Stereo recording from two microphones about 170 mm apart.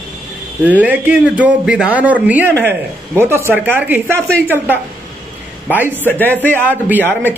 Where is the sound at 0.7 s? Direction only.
10° right (ahead or behind).